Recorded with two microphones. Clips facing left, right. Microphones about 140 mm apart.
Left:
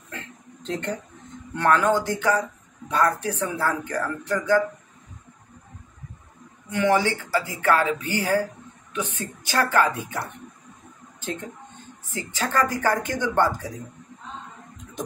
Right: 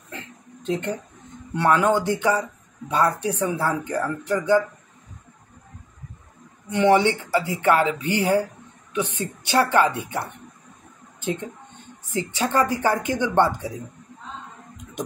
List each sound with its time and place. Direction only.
0.7 s speech: 15° right (ahead or behind)
6.7 s speech: 15° right (ahead or behind)
9.5 s a woman's voice: 20° right (ahead or behind)
12.1 s speech: 20° right (ahead or behind)